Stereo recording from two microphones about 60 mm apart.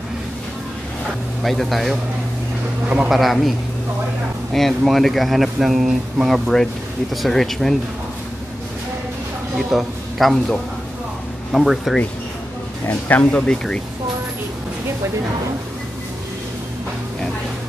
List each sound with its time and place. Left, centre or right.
1.4 s speech: centre
3.1 s speech: centre
9.6 s a man's voice: centre
11.5 s speech: centre
13.1 s speech: centre